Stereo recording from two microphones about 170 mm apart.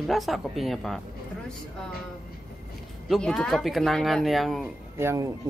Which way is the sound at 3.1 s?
5° left (ahead or behind).